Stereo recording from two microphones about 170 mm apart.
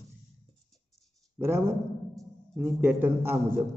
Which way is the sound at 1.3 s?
15° right (ahead or behind).